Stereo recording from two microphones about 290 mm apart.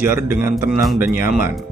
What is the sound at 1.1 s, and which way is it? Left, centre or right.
Speech, left.